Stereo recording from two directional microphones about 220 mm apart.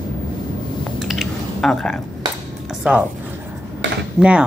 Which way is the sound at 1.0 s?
Centre (ahead or behind).